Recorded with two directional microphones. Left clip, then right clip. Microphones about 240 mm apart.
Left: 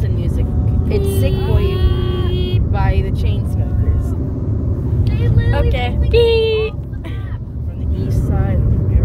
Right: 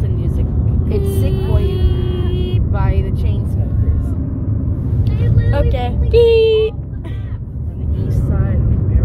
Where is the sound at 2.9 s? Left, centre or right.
Centre.